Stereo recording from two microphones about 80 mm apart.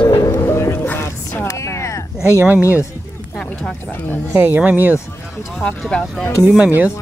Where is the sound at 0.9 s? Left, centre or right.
Left.